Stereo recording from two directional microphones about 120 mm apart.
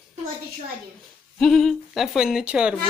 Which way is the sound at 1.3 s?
5° left (ahead or behind).